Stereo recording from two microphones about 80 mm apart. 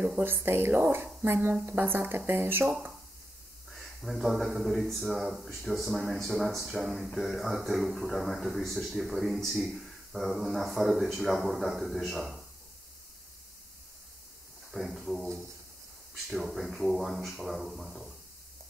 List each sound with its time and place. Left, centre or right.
0.2 s speech: right
3.7 s speech: centre
14.7 s speech: centre
16.3 s speech: centre